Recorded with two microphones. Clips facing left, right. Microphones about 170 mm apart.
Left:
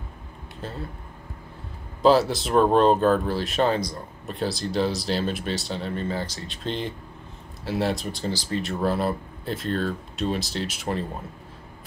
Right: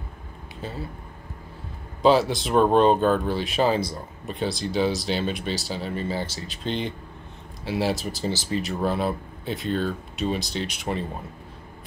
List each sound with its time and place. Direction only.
0.6 s speech: centre (ahead or behind)
2.0 s speech: centre (ahead or behind)
6.1 s speech: 25° right (ahead or behind)
6.4 s speech: centre (ahead or behind)